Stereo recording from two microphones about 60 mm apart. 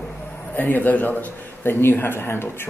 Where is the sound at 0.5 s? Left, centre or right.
Left.